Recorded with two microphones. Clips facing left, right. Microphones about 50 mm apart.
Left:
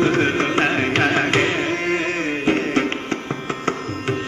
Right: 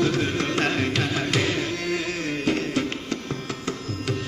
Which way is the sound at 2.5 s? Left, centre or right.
Left.